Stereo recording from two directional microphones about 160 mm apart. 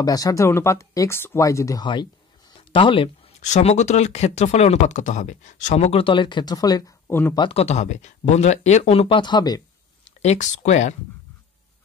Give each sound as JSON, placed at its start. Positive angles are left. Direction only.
{"t": 0.0, "sound": "speech", "side_deg": 25}
{"t": 3.3, "sound": "speech", "side_deg": 45}
{"t": 7.3, "sound": "speech", "side_deg": 35}
{"t": 10.2, "sound": "speech", "side_deg": 45}